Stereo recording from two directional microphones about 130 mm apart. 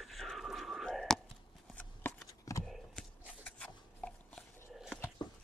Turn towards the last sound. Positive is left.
turn(degrees=5)  # may be behind; listen again after turning